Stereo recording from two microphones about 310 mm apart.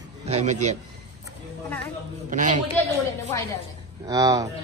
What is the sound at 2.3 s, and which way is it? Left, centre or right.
Speech, right.